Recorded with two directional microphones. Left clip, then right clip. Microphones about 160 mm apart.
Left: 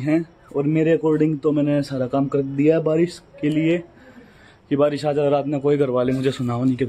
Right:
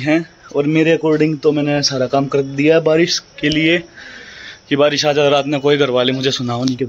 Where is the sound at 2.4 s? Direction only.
5° right (ahead or behind).